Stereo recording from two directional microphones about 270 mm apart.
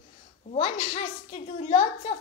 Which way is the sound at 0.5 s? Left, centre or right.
Left.